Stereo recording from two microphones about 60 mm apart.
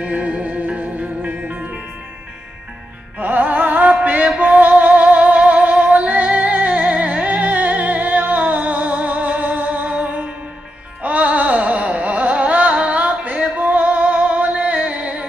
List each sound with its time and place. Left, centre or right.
0.0 s music: centre
3.2 s music: right
11.0 s carnatic music: right